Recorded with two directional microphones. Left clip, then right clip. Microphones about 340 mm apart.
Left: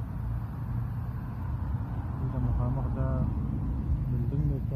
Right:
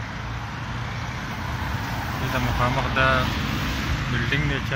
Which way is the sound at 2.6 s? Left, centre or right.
Right.